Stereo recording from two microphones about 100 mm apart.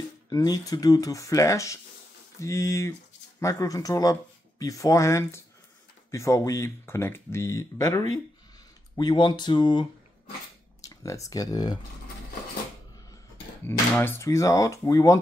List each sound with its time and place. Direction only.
0.3 s speech: 40° left (ahead or behind)
8.9 s speech: 50° left (ahead or behind)
10.8 s speech: 35° left (ahead or behind)
14.0 s speech: 25° left (ahead or behind)